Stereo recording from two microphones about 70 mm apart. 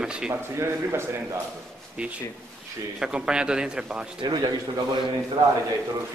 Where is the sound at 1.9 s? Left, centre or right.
Centre.